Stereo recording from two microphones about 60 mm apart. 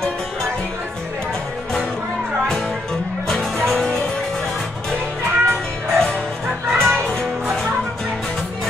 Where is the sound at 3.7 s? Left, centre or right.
Centre.